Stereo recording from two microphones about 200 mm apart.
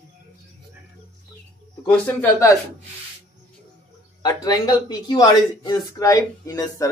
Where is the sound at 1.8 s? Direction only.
10° left (ahead or behind).